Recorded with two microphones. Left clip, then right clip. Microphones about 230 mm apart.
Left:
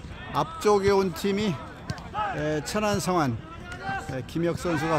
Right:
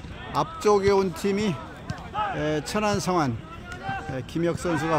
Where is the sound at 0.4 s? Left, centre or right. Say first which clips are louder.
Right 1 dB; centre.